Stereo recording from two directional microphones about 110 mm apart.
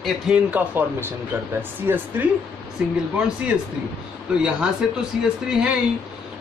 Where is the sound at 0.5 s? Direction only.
20° right (ahead or behind).